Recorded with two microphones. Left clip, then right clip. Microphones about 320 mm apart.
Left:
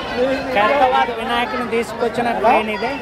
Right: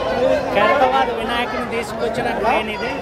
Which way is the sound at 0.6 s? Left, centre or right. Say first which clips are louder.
Left 2 dB; centre.